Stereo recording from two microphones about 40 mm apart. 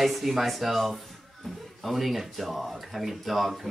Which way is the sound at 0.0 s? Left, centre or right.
Centre.